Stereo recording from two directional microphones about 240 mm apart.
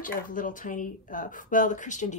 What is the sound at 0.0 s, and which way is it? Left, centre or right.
A woman's voice, left.